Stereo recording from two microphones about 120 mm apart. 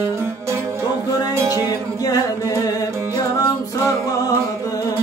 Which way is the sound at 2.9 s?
25° right (ahead or behind).